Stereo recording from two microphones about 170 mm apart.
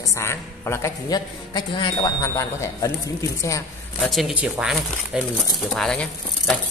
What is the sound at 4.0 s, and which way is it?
Speech, centre (ahead or behind).